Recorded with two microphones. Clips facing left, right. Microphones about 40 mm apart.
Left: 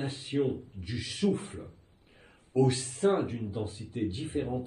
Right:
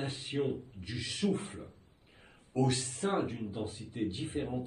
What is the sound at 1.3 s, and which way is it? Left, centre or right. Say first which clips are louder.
Speech: left 2 dB; right.